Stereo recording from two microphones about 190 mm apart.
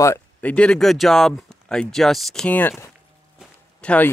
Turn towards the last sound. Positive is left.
turn(degrees=5)  # may be behind; listen again after turning